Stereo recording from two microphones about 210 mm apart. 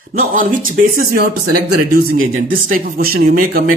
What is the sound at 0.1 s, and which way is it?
Speech, 40° right (ahead or behind).